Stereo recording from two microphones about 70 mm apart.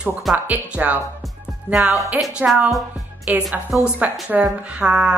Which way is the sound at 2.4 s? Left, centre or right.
Centre.